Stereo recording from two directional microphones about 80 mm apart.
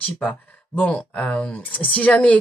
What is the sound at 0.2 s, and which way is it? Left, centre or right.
Speech, centre.